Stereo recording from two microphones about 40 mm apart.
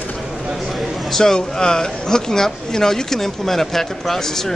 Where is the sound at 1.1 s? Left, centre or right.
Centre.